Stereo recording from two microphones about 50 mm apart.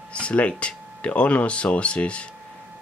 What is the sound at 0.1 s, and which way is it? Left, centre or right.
Speech, left.